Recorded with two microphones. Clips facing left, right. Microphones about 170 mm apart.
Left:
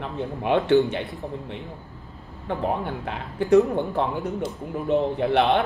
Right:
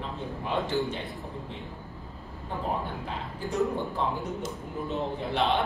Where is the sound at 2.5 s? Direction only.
75° left (ahead or behind).